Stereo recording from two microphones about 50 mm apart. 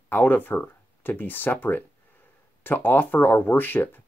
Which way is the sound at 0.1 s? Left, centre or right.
Left.